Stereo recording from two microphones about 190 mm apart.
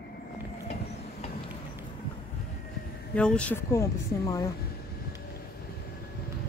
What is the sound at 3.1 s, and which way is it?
A woman's voice, 5° left (ahead or behind).